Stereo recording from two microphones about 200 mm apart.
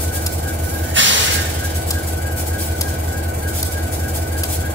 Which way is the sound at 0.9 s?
65° right (ahead or behind).